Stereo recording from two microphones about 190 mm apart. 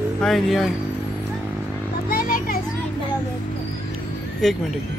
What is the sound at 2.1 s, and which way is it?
Children playing, 50° left (ahead or behind).